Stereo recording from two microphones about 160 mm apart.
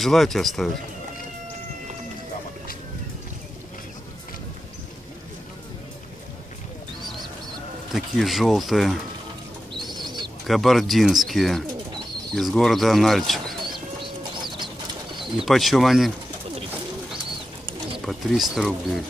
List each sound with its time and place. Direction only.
0.0 s speech: centre (ahead or behind)
7.9 s speech: centre (ahead or behind)
9.8 s bird: centre (ahead or behind)
10.4 s speech: centre (ahead or behind)
14.3 s bird: 30° right (ahead or behind)
15.3 s speech: centre (ahead or behind)
18.0 s speech: centre (ahead or behind)